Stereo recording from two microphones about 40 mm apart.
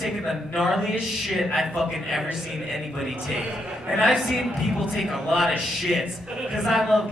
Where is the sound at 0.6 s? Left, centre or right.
Centre.